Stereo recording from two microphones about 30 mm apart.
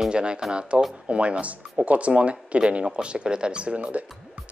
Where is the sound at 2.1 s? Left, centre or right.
Right.